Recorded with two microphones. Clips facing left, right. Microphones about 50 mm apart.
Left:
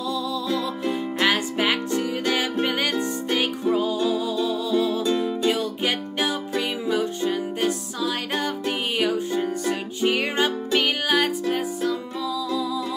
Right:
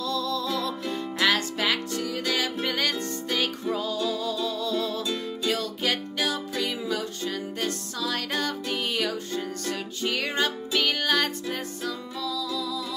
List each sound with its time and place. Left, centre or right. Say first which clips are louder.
0.0 s music: left 2 dB; centre
5.0 s music: left 7 dB; left